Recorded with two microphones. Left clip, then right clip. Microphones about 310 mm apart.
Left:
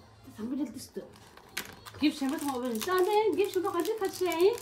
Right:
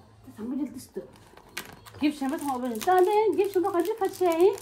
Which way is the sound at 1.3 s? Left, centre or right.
Centre.